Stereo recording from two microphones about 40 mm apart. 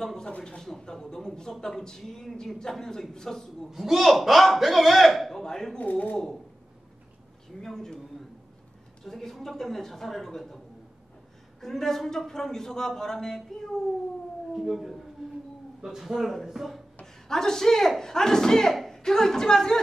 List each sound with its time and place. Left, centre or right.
0.0 s speech: centre
3.7 s a man's voice: centre
5.3 s a sound: centre
5.8 s speech: left
6.1 s speech: centre
7.6 s speech: centre
9.0 s speech: centre
11.6 s speech: centre
14.5 s a man's voice: centre
15.2 s howl: centre
15.8 s a man's voice: centre
17.0 s a man's voice: centre